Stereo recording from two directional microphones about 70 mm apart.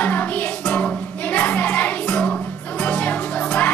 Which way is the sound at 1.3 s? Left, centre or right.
Left.